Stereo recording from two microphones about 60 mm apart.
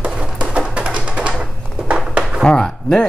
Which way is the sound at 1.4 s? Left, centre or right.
Centre.